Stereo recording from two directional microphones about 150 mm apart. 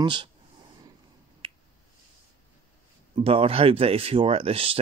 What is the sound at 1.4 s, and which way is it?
Finger snapping, 35° right (ahead or behind).